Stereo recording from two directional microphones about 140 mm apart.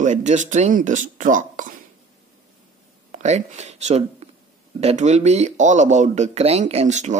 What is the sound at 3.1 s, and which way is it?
Speech, 55° right (ahead or behind).